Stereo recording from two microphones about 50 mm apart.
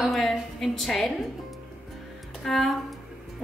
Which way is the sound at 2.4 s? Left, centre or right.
Centre.